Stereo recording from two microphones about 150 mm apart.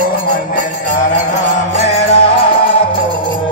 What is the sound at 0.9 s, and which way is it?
Music, 60° left (ahead or behind).